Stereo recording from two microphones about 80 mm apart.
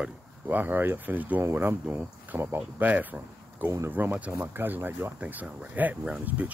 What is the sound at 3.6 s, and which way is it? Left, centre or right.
Speech, right.